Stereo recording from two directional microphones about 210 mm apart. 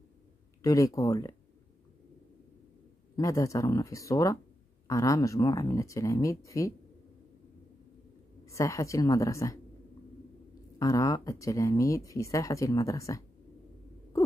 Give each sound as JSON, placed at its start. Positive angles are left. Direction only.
{"t": 0.6, "sound": "speech", "side_deg": 15}
{"t": 3.2, "sound": "speech", "side_deg": 15}
{"t": 8.5, "sound": "speech", "side_deg": 15}
{"t": 10.8, "sound": "speech", "side_deg": 15}